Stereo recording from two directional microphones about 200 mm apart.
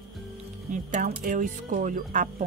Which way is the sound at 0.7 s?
40° right (ahead or behind).